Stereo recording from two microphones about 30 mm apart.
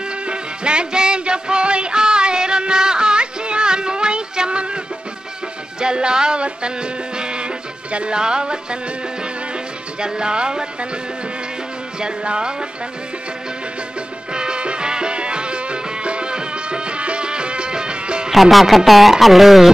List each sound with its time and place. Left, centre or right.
0.3 s music: right
5.8 s music: right
9.9 s music: right
12.3 s music: right
14.3 s music: right
18.3 s speech: centre